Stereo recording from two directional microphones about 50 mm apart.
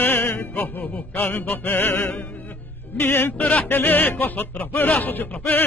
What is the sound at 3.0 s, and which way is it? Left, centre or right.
Music, left.